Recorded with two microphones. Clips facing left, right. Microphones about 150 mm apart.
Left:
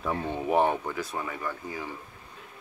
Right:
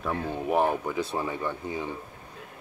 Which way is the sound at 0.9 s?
30° right (ahead or behind).